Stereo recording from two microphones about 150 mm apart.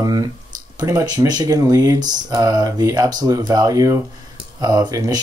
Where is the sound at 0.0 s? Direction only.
25° right (ahead or behind).